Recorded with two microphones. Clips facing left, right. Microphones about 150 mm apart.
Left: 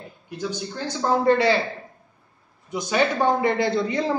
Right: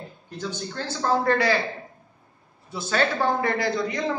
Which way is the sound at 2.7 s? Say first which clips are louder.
Left 2 dB; 15° left (ahead or behind).